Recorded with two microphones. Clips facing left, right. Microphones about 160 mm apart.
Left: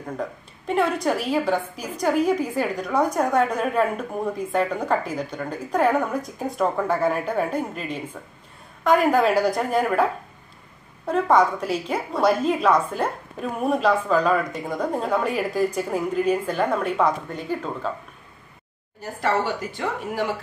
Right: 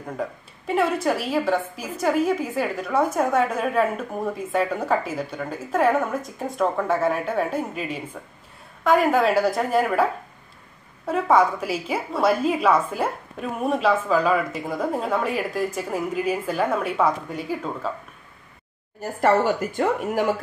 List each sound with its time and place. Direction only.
0.2 s a woman's voice: 5° right (ahead or behind)
11.1 s a woman's voice: 5° right (ahead or behind)
18.9 s speech: 45° right (ahead or behind)